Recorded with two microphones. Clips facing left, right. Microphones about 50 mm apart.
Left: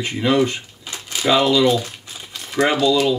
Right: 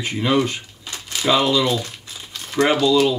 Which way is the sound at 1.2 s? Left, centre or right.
Centre.